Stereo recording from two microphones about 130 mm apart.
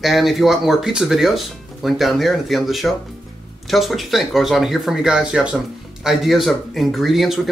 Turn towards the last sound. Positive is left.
turn(degrees=0)  # may be behind; listen again after turning